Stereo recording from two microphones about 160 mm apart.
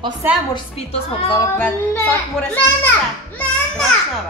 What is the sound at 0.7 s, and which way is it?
Speech, 35° left (ahead or behind).